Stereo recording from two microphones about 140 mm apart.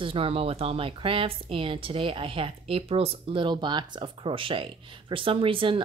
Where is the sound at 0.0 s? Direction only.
40° right (ahead or behind).